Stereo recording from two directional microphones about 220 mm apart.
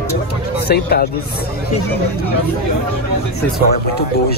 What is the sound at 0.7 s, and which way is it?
Speech, 45° left (ahead or behind).